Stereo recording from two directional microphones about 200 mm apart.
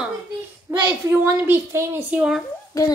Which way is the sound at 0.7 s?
15° right (ahead or behind).